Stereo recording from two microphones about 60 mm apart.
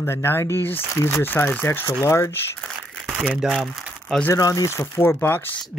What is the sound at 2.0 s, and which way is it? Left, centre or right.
Speech, left.